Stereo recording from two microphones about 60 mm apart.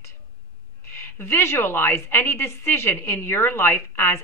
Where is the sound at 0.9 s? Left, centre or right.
Left.